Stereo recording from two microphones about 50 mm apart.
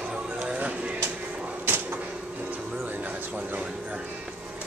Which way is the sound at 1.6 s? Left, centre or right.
Right.